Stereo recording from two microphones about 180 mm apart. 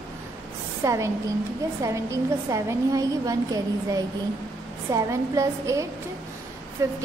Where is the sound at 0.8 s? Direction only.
15° right (ahead or behind).